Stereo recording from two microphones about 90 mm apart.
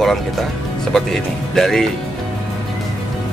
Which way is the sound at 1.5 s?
5° left (ahead or behind).